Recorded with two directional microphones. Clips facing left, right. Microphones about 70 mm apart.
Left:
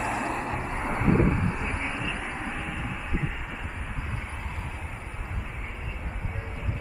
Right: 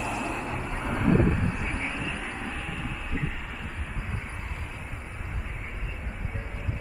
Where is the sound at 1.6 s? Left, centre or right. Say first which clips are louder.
Left 1 dB; centre.